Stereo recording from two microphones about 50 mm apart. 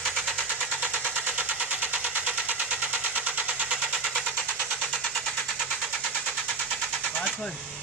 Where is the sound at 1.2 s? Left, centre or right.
Right.